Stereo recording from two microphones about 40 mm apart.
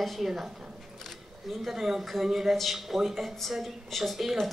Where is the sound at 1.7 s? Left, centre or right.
Centre.